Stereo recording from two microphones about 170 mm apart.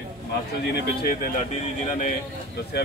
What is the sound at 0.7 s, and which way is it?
Speech, 55° left (ahead or behind).